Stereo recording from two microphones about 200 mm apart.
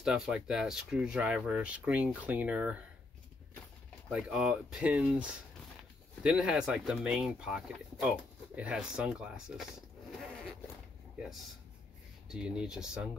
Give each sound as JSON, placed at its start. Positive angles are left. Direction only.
{"t": 0.0, "sound": "speech", "side_deg": 0}
{"t": 4.1, "sound": "speech", "side_deg": -5}
{"t": 12.3, "sound": "speech", "side_deg": -5}